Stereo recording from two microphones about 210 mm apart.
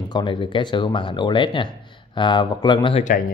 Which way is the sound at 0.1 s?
25° left (ahead or behind).